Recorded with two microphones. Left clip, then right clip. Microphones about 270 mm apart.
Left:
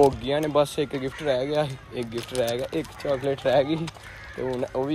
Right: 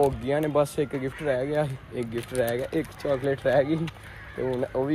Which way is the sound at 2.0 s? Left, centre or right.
Left.